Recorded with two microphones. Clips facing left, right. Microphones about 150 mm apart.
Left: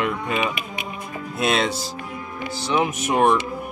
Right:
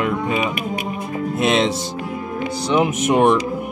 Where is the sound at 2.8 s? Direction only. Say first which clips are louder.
Right 4 dB; 15° right (ahead or behind).